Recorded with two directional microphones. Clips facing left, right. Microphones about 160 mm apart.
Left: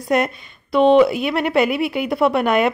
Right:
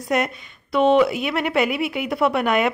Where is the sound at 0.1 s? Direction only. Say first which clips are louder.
Left 3 dB; 35° left (ahead or behind).